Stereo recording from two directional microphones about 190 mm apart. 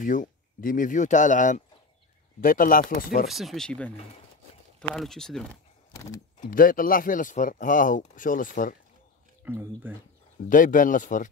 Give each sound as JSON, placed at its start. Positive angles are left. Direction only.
{"t": 0.0, "sound": "speech", "side_deg": 45}
{"t": 3.3, "sound": "speech", "side_deg": 0}
{"t": 6.5, "sound": "speech", "side_deg": 45}
{"t": 9.4, "sound": "speech", "side_deg": -10}
{"t": 10.5, "sound": "speech", "side_deg": 45}